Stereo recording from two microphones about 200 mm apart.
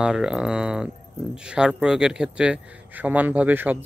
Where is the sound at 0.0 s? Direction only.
5° right (ahead or behind).